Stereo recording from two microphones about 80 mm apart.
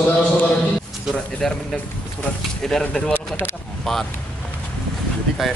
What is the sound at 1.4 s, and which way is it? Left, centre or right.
Speech, centre.